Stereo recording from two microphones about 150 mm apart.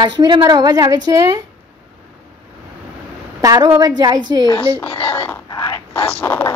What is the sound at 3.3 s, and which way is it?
A woman's voice, 25° right (ahead or behind).